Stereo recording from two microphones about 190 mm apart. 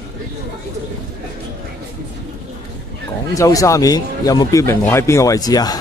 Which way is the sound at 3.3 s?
15° left (ahead or behind).